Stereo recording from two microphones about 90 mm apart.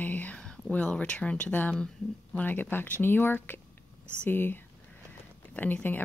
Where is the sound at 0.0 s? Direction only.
20° left (ahead or behind).